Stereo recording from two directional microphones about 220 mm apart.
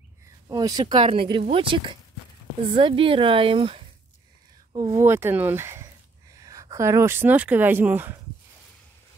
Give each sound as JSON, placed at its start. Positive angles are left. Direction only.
{"t": 0.5, "sound": "speech", "side_deg": -20}
{"t": 4.7, "sound": "speech", "side_deg": -15}